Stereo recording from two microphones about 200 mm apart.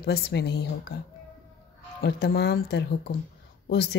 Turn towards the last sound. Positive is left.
turn(degrees=55)  # may be behind; listen again after turning